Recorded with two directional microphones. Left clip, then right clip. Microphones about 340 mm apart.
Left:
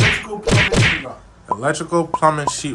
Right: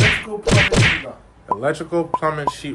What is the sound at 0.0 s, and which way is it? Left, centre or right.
Whack, centre.